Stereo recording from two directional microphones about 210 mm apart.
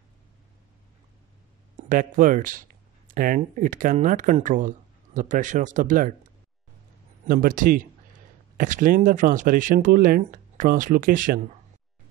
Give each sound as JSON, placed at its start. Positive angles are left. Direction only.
{"t": 1.8, "sound": "speech", "side_deg": -40}
{"t": 7.2, "sound": "speech", "side_deg": -40}